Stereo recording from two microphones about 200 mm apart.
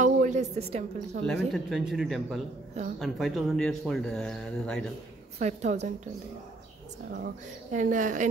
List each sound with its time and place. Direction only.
0.0 s speech: 35° right (ahead or behind)
1.5 s speech: centre (ahead or behind)
5.4 s a woman's voice: 35° right (ahead or behind)
7.1 s speech: 55° right (ahead or behind)
7.7 s a woman's voice: 40° right (ahead or behind)